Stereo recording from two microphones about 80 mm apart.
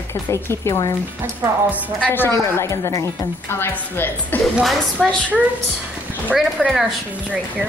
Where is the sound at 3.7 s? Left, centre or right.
Left.